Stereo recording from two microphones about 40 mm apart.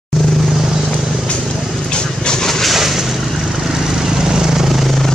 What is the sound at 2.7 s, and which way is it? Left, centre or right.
Vehicle, centre.